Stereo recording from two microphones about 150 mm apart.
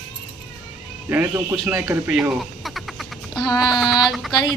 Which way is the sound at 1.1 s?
15° right (ahead or behind).